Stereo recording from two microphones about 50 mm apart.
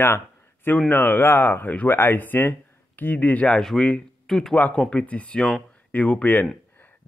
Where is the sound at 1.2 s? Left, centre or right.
Left.